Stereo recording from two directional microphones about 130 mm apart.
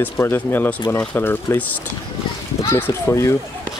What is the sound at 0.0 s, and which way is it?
Speech, 15° left (ahead or behind).